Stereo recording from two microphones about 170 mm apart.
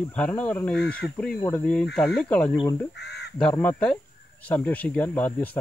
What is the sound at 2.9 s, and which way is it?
Speech, 80° left.